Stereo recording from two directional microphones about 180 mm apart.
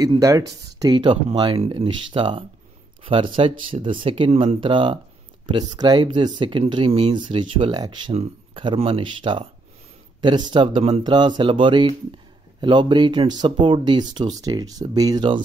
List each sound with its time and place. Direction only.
0.0 s speech: 20° right (ahead or behind)